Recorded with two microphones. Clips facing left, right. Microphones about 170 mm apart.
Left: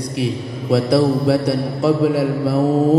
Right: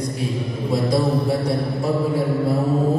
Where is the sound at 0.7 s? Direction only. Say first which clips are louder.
Left 5 dB; 80° left.